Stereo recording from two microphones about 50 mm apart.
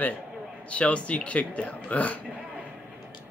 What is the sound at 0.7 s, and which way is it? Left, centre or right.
Speech, left.